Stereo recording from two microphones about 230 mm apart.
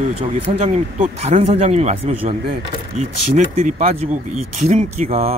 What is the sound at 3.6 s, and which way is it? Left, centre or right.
Speech, right.